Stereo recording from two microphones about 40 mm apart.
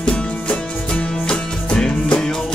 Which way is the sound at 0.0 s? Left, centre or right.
Left.